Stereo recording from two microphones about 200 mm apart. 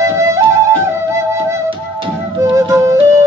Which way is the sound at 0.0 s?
15° right (ahead or behind).